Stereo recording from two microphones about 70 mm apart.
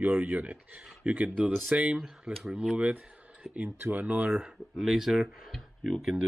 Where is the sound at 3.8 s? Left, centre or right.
Right.